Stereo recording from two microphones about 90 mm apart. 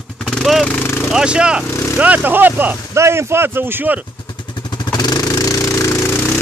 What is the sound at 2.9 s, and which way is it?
Speech, 30° right (ahead or behind).